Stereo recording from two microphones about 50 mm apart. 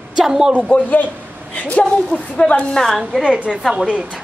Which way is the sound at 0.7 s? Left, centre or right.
Left.